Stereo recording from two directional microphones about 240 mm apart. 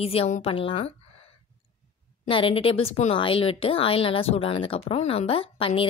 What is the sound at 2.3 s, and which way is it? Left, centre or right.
A woman's voice, left.